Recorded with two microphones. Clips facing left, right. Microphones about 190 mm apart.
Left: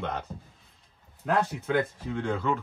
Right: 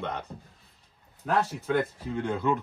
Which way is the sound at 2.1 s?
15° right (ahead or behind).